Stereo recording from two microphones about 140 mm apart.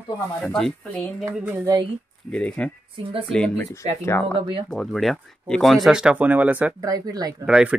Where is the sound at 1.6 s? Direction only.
25° right (ahead or behind).